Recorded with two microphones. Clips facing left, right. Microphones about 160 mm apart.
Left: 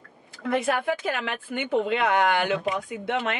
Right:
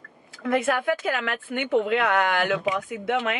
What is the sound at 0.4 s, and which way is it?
Speech, centre (ahead or behind).